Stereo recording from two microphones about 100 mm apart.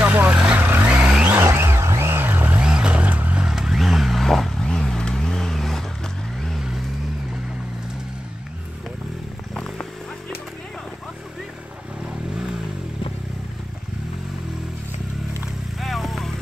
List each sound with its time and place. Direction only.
0.0 s vehicle: 15° right (ahead or behind)
2.6 s vehicle: 10° right (ahead or behind)
9.5 s music: 10° left (ahead or behind)
15.8 s vehicle: centre (ahead or behind)